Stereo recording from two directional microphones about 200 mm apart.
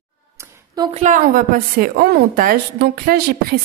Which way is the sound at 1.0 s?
45° right (ahead or behind).